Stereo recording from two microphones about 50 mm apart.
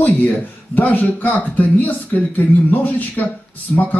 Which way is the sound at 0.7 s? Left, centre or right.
Left.